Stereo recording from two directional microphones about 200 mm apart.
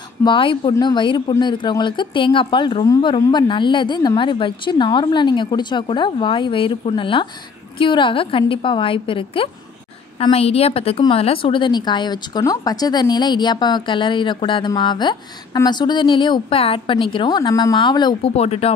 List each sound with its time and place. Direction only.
0.2 s a woman's voice: 25° left (ahead or behind)